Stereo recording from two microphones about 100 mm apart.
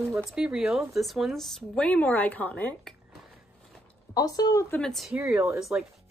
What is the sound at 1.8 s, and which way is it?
Speech, 15° left (ahead or behind).